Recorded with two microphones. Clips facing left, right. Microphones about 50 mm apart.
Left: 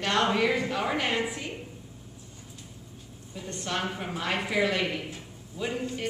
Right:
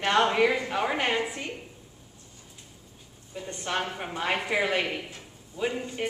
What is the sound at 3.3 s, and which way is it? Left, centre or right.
A woman's voice, centre.